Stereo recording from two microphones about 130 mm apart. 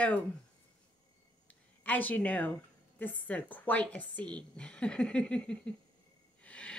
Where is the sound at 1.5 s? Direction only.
15° left (ahead or behind).